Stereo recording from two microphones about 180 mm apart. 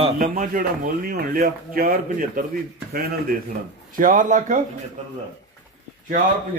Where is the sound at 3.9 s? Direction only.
50° right (ahead or behind).